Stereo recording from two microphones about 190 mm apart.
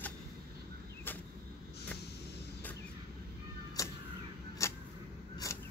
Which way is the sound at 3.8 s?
15° left (ahead or behind).